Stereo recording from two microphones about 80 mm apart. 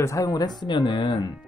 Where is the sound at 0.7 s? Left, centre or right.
Left.